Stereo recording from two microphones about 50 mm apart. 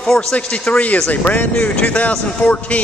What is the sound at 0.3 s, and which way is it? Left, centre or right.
Speech, left.